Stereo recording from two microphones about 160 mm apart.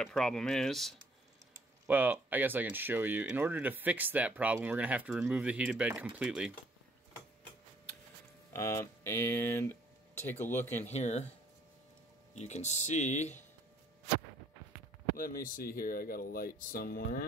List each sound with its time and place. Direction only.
0.0 s speech: 5° left (ahead or behind)
1.9 s speech: 10° right (ahead or behind)
8.5 s speech: 20° left (ahead or behind)
10.9 s speech: 45° left (ahead or behind)
12.4 s speech: 45° left (ahead or behind)
15.1 s speech: 60° left (ahead or behind)